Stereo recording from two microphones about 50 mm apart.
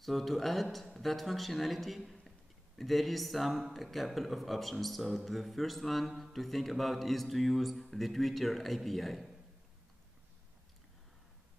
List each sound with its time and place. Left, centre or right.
0.0 s speech: centre